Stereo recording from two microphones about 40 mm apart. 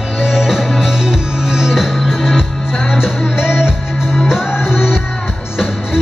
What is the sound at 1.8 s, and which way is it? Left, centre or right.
Music, centre.